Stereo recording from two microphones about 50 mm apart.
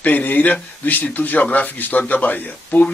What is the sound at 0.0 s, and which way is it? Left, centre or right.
Speech, left.